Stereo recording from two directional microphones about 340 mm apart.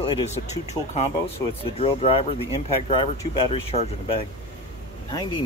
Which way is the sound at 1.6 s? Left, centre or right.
Centre.